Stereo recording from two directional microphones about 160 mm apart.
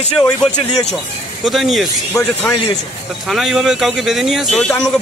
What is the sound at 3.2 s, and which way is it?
Speech, centre (ahead or behind).